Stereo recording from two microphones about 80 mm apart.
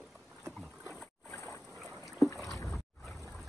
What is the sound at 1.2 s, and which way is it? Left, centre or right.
Boat, left.